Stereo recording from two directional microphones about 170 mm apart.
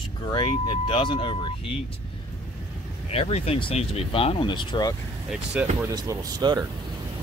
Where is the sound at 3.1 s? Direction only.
35° left (ahead or behind).